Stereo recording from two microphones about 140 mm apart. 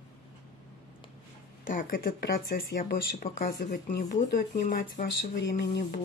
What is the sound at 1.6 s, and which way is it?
Speech, 85° left.